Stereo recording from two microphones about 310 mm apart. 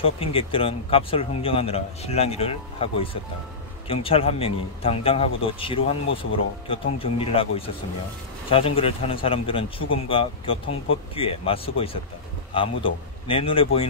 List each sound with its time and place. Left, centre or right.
0.0 s speech: centre